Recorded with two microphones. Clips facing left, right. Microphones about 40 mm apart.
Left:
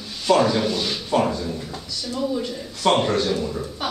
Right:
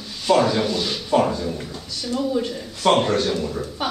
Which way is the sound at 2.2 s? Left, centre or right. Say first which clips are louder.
Right 1 dB; centre.